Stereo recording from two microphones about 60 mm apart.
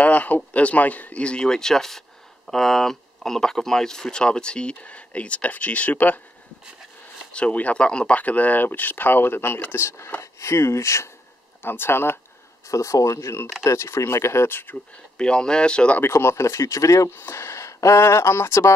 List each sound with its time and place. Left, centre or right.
0.0 s speech: left
7.3 s speech: left
9.8 s speech: left
11.6 s speech: left
12.6 s speech: left
15.1 s speech: centre
16.0 s speech: left
17.1 s speech: left